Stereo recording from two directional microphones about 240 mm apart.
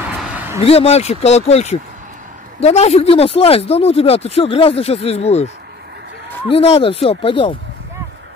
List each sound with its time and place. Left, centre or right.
0.2 s a sound: centre
0.6 s speech: left
6.5 s speech: left